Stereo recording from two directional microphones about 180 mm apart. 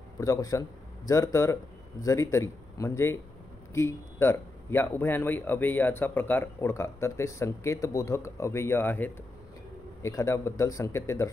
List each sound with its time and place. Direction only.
0.2 s a man's voice: 15° left (ahead or behind)